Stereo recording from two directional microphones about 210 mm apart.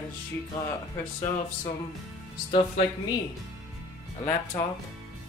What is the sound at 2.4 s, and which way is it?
Speech, 25° left (ahead or behind).